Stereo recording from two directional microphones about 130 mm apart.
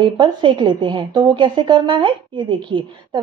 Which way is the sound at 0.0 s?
40° right (ahead or behind).